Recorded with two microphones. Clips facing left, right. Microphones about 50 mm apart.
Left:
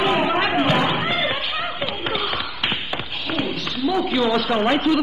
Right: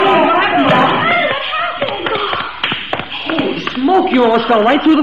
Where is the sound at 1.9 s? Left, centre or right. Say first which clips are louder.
Right 8 dB; right.